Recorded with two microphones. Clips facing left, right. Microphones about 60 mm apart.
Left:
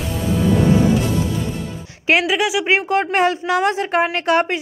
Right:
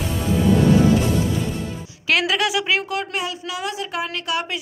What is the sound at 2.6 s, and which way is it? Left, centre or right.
A woman's voice, left.